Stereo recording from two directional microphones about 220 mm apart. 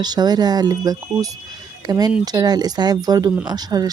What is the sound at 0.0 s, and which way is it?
Speech, 20° right (ahead or behind).